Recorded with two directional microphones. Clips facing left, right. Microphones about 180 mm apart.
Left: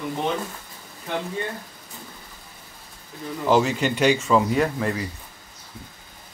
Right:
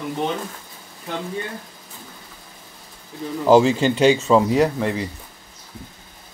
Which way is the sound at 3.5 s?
30° right (ahead or behind).